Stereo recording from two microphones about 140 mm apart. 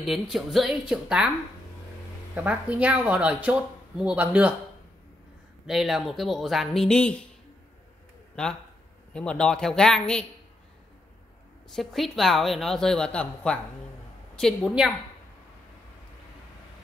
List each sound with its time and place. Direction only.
0.0 s a woman's voice: centre (ahead or behind)
2.3 s speech: 10° right (ahead or behind)
5.7 s a woman's voice: centre (ahead or behind)
8.4 s a woman's voice: 5° left (ahead or behind)
11.7 s a woman's voice: centre (ahead or behind)